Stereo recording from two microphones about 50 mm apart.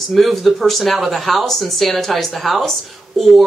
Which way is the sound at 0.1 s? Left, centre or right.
Centre.